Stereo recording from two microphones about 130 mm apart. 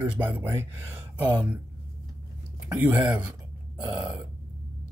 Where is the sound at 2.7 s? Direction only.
15° right (ahead or behind).